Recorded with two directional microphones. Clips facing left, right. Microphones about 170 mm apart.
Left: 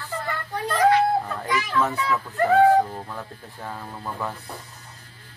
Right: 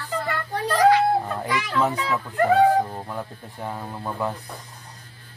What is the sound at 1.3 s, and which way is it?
Speech, 15° right (ahead or behind).